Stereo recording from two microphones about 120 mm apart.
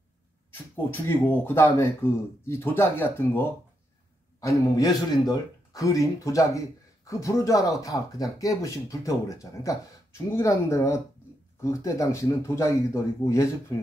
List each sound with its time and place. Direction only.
0.9 s speech: 20° left (ahead or behind)